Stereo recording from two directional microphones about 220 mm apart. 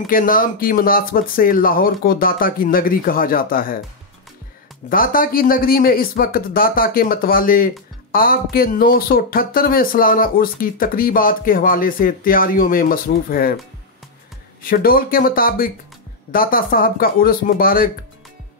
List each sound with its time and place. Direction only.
0.0 s speech: 40° left (ahead or behind)
4.8 s speech: 40° left (ahead or behind)
14.6 s speech: 40° left (ahead or behind)